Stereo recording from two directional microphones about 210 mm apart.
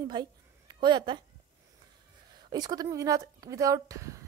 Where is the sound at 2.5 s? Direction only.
20° right (ahead or behind).